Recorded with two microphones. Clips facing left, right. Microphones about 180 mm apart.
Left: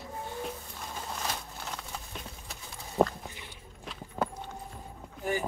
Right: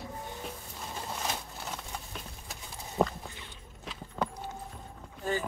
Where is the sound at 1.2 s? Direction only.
5° right (ahead or behind).